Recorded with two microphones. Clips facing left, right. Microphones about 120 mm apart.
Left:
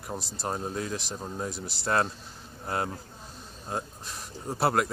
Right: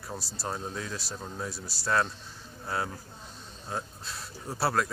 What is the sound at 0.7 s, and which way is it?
Speech, 40° left (ahead or behind).